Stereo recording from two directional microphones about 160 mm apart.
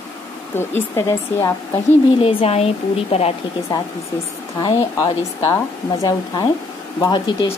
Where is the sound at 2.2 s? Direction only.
35° left (ahead or behind).